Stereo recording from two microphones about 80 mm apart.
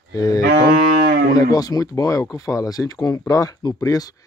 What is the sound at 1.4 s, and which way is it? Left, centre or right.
Speech, left.